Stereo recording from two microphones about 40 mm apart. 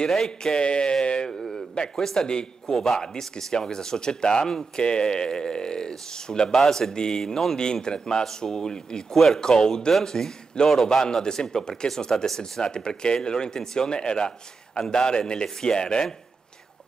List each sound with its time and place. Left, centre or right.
0.1 s speech: centre
1.5 s a man's voice: centre
2.7 s a man's voice: centre